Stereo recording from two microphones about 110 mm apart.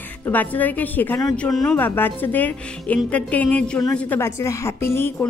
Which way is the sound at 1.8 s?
20° left (ahead or behind).